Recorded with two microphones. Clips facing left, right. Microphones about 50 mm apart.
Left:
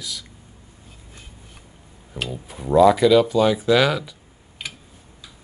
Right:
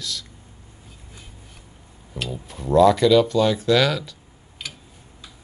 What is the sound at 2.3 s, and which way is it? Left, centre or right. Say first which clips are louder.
Speech: even; centre.